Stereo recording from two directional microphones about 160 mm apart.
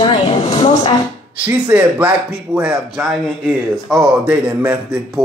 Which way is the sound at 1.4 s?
10° right (ahead or behind).